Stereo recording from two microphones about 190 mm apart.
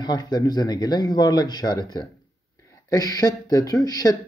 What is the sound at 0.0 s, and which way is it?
Speech, 20° left (ahead or behind).